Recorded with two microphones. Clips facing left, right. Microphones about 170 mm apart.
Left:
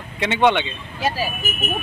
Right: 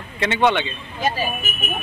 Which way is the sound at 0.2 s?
15° left (ahead or behind).